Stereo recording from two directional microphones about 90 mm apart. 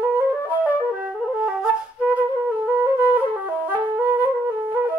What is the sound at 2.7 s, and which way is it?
Music, 25° right (ahead or behind).